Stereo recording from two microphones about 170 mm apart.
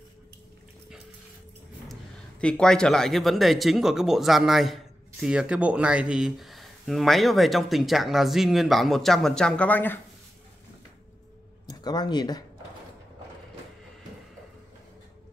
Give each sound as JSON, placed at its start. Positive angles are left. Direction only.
{"t": 2.4, "sound": "speech", "side_deg": 5}
{"t": 11.6, "sound": "speech", "side_deg": 25}